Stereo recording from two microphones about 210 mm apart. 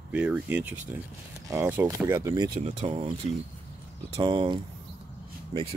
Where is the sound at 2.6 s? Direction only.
25° right (ahead or behind).